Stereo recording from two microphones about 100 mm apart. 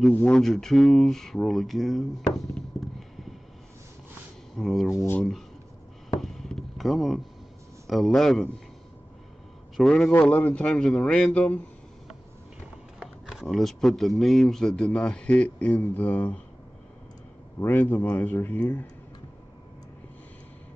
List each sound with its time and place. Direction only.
0.1 s speech: 10° left (ahead or behind)
4.6 s speech: centre (ahead or behind)
4.9 s speech: 25° left (ahead or behind)
6.2 s a sound: 5° left (ahead or behind)
7.8 s speech: centre (ahead or behind)
9.8 s speech: 5° left (ahead or behind)
10.1 s a man's voice: 15° left (ahead or behind)
13.0 s speech: centre (ahead or behind); by 16.3 s 15° left (ahead or behind)
17.6 s speech: 20° left (ahead or behind)